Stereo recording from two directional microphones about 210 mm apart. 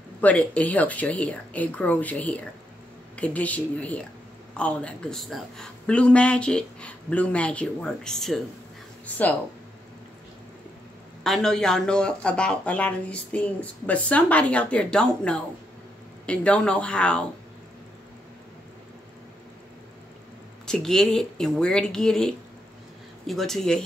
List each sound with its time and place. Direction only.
0.2 s speech: 5° left (ahead or behind)
11.2 s speech: centre (ahead or behind)
20.6 s speech: centre (ahead or behind)